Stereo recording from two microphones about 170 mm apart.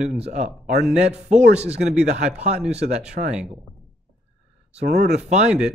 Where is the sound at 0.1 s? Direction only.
45° right (ahead or behind).